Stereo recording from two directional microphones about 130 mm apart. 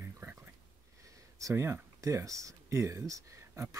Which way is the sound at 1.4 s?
20° right (ahead or behind).